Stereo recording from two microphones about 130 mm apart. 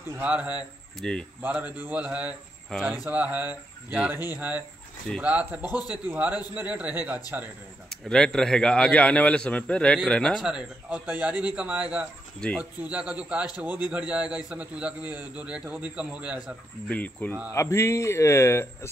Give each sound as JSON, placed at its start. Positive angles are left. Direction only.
{"t": 0.1, "sound": "a man's voice", "side_deg": -10}
{"t": 0.9, "sound": "speech", "side_deg": 5}
{"t": 1.4, "sound": "a man's voice", "side_deg": -10}
{"t": 7.9, "sound": "a man's voice", "side_deg": 5}
{"t": 10.4, "sound": "a man's voice", "side_deg": -10}
{"t": 16.9, "sound": "a man's voice", "side_deg": 10}
{"t": 17.5, "sound": "speech", "side_deg": 25}